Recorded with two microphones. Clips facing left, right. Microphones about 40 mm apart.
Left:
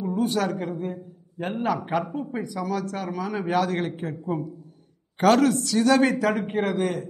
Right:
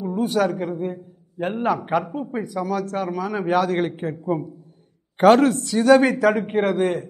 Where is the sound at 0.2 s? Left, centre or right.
Centre; by 3.2 s right.